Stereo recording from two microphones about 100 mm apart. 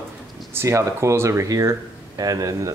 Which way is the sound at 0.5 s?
30° right (ahead or behind).